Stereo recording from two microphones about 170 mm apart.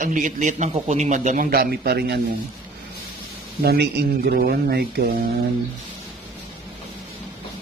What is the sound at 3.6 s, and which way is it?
Speech, 75° right (ahead or behind).